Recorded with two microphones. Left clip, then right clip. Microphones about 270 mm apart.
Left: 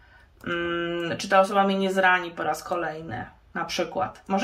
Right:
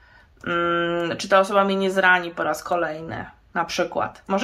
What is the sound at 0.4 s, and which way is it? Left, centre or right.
Speech, centre.